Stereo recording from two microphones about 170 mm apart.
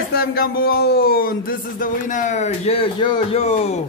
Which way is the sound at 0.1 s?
65° left (ahead or behind).